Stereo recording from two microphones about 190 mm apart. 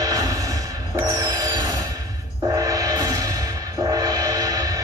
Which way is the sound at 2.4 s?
15° right (ahead or behind).